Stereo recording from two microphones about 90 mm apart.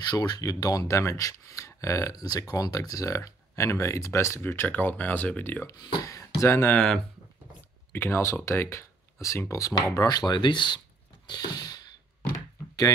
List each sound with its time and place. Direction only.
0.1 s speech: 50° left (ahead or behind); by 5.8 s 25° left (ahead or behind)
5.8 s speech: 50° left (ahead or behind)
6.0 s speech: 35° left (ahead or behind)
6.7 s speech: 10° left (ahead or behind)
7.9 s speech: 25° left (ahead or behind)
9.9 s speech: 50° left (ahead or behind)
11.2 s a sound: 50° left (ahead or behind)